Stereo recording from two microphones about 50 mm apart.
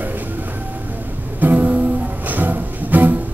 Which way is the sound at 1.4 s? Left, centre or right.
Right.